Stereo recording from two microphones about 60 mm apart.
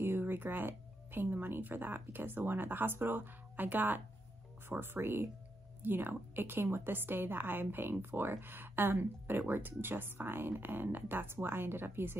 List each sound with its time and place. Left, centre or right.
0.0 s a woman's voice: right